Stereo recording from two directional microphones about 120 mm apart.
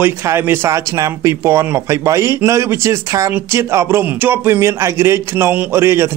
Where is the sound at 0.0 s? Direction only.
20° right (ahead or behind).